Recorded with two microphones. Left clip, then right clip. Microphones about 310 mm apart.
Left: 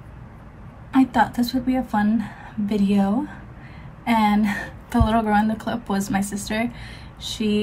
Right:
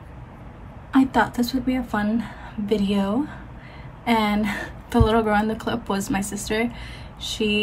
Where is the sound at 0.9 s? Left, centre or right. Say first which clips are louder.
Left 1 dB; centre.